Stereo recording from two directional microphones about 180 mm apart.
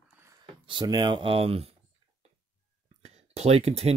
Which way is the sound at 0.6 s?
25° right (ahead or behind).